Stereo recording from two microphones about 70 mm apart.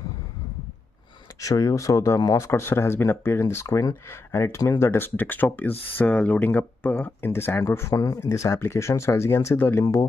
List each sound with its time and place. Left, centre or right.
1.4 s speech: left
3.6 s speech: left
4.3 s speech: left
7.9 s speech: left
8.2 s speech: left